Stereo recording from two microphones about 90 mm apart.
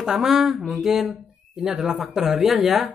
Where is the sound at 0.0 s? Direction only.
5° right (ahead or behind).